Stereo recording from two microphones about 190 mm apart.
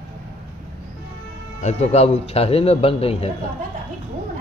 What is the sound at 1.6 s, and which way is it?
A man's voice, 35° left (ahead or behind).